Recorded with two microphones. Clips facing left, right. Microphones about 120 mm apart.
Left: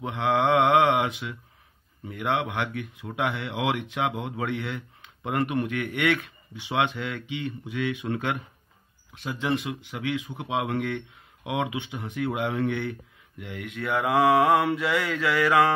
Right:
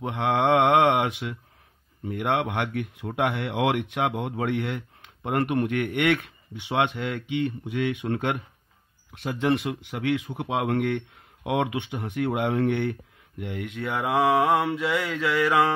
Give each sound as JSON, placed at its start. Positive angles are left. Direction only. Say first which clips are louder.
{"t": 0.0, "sound": "mantra", "louder": "even", "side_deg": -40}
{"t": 2.0, "sound": "speech", "louder": "right 2 dB", "side_deg": -45}
{"t": 10.2, "sound": "speech", "louder": "right 2 dB", "side_deg": -40}
{"t": 13.4, "sound": "mantra", "louder": "right 3 dB", "side_deg": -40}